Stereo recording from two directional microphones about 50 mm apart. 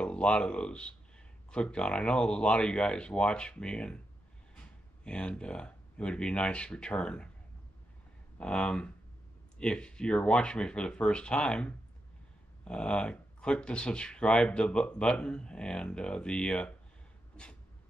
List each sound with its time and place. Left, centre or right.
0.0 s speech: left
5.0 s speech: left
8.4 s speech: left
17.4 s a sound: centre